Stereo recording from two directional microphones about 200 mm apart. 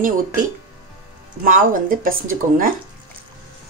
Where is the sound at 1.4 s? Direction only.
40° right (ahead or behind).